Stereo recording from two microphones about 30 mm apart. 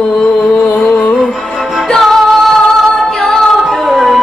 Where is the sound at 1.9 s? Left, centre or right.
Centre.